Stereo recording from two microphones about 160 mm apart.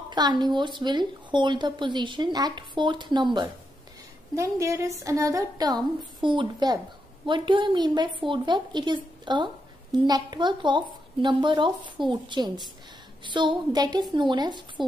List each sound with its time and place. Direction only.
0.1 s a woman's voice: 25° right (ahead or behind)
4.4 s a woman's voice: 20° right (ahead or behind)